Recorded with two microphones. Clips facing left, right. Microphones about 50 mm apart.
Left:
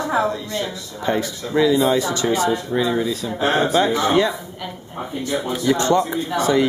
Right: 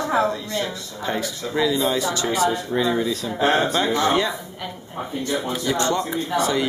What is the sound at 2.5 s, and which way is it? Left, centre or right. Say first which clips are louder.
Speech: left 2 dB; centre.